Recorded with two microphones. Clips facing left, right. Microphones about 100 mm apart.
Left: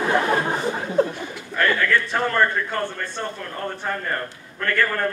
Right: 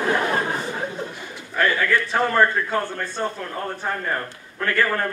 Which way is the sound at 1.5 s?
5° right (ahead or behind).